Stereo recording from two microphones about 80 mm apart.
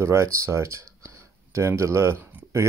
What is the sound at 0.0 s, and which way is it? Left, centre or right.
Speech, right.